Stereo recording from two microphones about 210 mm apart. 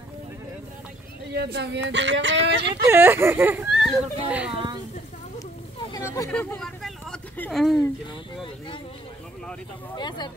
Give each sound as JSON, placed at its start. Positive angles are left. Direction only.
{"t": 1.3, "sound": "speech", "side_deg": -50}
{"t": 2.9, "sound": "speech", "side_deg": -10}
{"t": 5.9, "sound": "vehicle", "side_deg": 15}
{"t": 6.3, "sound": "speech", "side_deg": 5}
{"t": 9.9, "sound": "speech", "side_deg": 20}